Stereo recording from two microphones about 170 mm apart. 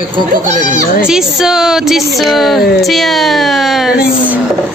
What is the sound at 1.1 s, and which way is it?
Speech, 5° right (ahead or behind).